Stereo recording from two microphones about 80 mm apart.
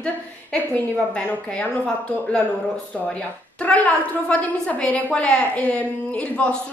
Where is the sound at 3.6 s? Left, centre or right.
Centre.